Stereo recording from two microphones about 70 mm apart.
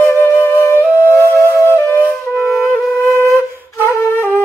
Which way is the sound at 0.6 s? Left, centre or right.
Left.